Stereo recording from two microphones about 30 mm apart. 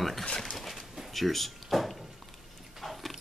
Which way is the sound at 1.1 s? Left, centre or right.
Centre.